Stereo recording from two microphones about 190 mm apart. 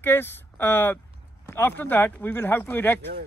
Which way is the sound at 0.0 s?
10° left (ahead or behind).